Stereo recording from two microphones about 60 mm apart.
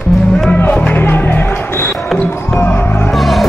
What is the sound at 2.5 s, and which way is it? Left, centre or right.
Music, left.